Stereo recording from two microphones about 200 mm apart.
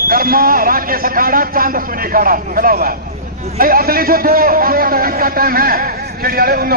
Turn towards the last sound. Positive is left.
turn(degrees=-50)  # may be behind; listen again after turning